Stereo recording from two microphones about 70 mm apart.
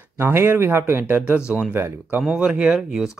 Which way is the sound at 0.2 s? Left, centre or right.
Right.